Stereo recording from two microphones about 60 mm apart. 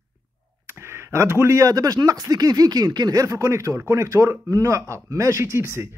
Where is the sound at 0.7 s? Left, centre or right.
Right.